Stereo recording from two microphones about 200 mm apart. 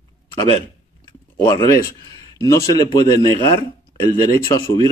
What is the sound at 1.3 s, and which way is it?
Speech, 15° left (ahead or behind).